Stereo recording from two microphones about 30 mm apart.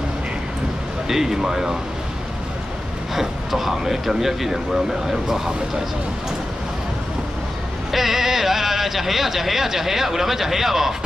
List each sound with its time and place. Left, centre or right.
1.0 s speech: centre
3.2 s speech: centre
7.9 s speech: centre